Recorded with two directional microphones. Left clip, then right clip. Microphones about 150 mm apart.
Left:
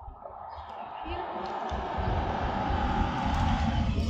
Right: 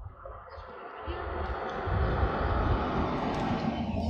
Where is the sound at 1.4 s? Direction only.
60° left (ahead or behind).